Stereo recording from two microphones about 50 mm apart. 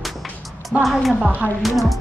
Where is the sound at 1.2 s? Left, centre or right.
Right.